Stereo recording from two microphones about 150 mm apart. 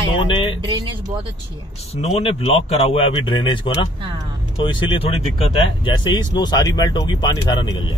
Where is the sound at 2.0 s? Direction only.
40° left (ahead or behind).